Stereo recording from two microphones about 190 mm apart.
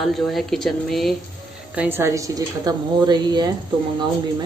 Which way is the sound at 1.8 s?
10° right (ahead or behind).